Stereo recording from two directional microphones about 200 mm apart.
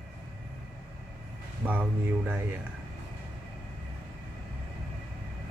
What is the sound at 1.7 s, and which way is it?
Speech, 10° right (ahead or behind).